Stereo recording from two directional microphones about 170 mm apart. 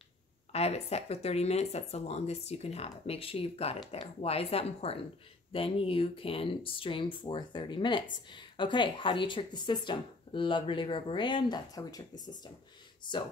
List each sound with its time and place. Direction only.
0.5 s speech: 40° left (ahead or behind)
13.0 s speech: 25° left (ahead or behind)